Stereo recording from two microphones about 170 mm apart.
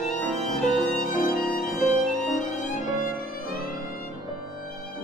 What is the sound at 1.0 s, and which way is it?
Violin, 50° left (ahead or behind).